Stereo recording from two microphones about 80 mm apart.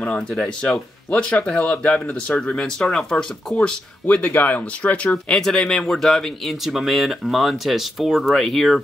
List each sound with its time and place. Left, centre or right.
0.3 s speech: centre
4.0 s speech: left; by 8.8 s centre